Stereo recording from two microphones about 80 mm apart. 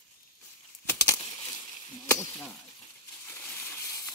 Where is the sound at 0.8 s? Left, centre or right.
Left.